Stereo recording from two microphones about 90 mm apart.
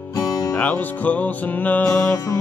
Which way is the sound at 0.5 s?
15° left (ahead or behind).